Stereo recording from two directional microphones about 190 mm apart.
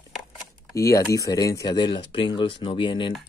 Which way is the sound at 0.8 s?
15° left (ahead or behind).